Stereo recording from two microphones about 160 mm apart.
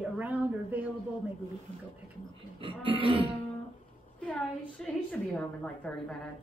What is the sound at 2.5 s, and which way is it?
Speech, 35° right (ahead or behind).